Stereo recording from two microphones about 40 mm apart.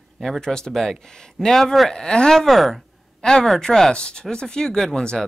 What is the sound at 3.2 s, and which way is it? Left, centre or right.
Speech, centre.